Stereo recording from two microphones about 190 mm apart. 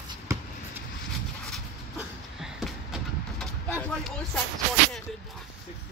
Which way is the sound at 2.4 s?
Centre (ahead or behind).